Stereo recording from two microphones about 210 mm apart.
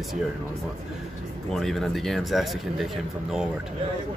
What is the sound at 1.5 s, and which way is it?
Speech, centre (ahead or behind).